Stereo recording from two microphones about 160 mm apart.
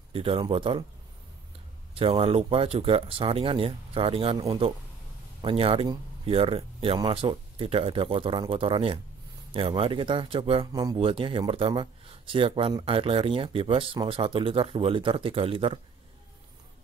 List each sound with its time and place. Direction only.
0.1 s speech: 35° right (ahead or behind)
2.0 s speech: 35° right (ahead or behind)
10.7 s speech: 25° right (ahead or behind)
11.0 s speech: 35° right (ahead or behind)